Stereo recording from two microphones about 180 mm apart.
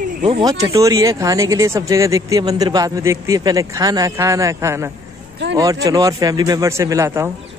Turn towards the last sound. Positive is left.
turn(degrees=-15)  # may be behind; listen again after turning